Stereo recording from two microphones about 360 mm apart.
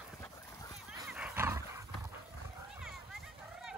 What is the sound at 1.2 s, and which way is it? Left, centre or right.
Wild animals, centre.